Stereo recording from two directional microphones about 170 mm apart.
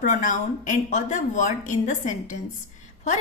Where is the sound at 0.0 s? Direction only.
45° left (ahead or behind).